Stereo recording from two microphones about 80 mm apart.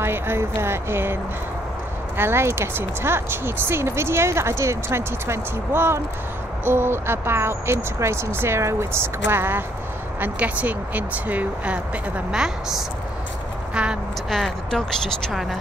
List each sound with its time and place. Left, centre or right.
0.0 s speech: right
2.1 s speech: right
12.3 s a woman's voice: centre
14.3 s speech: centre